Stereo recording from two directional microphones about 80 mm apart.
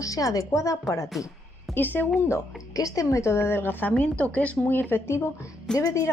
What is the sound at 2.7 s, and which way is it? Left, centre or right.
A woman's voice, left.